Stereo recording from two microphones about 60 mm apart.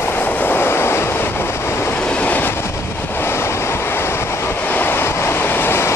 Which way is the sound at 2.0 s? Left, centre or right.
Left.